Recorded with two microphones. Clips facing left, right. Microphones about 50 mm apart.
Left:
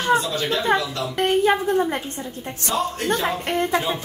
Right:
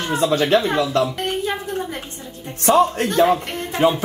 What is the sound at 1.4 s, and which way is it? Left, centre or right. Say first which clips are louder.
Speech: left 6 dB; left.